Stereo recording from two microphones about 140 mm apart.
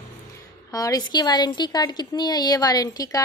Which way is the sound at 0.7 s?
25° left (ahead or behind).